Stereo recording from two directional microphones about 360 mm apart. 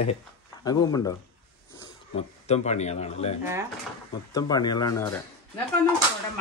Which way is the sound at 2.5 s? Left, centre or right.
Centre.